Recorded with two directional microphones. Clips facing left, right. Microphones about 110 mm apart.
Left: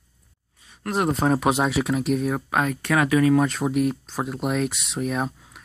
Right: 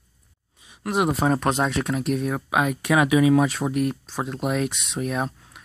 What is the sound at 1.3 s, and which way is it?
Speech, 5° left (ahead or behind).